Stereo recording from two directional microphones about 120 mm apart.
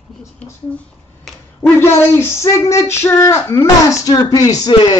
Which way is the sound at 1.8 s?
20° left (ahead or behind).